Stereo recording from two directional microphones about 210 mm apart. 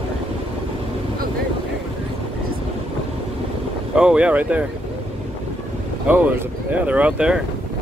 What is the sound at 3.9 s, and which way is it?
Speech, 5° right (ahead or behind).